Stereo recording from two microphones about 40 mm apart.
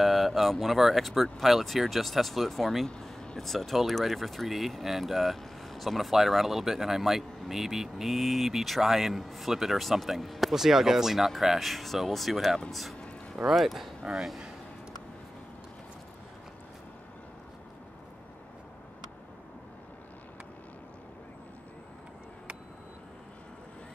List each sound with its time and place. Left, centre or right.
0.0 s speech: centre
14.1 s speech: centre